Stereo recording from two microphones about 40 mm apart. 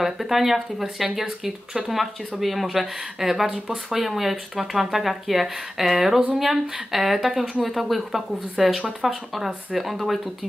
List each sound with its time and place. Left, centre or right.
0.0 s speech: centre
4.0 s speech: centre